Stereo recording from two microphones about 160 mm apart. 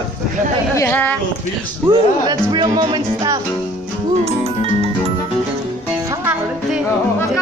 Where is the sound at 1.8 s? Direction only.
25° right (ahead or behind).